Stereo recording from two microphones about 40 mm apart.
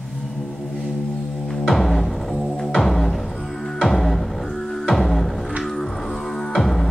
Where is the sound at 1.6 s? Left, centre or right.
Centre.